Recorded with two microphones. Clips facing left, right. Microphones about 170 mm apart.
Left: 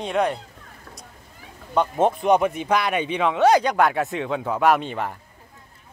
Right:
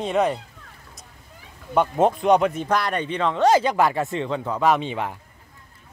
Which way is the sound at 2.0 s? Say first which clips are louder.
Right 1 dB; 5° left (ahead or behind).